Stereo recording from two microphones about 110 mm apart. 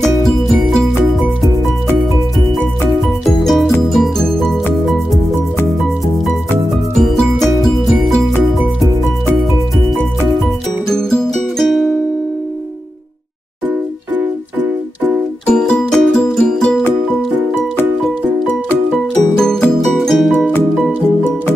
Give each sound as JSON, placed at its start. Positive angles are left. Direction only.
{"t": 0.2, "sound": "music", "side_deg": 0}
{"t": 3.3, "sound": "music", "side_deg": 0}
{"t": 7.0, "sound": "music", "side_deg": 0}
{"t": 10.9, "sound": "music", "side_deg": 5}
{"t": 15.4, "sound": "music", "side_deg": 10}
{"t": 19.3, "sound": "music", "side_deg": 5}